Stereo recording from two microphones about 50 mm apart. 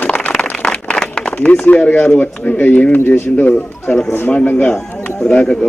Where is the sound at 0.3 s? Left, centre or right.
Centre.